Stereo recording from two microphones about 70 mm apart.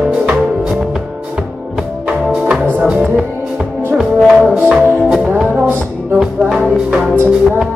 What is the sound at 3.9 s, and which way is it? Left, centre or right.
Brass instrument, centre.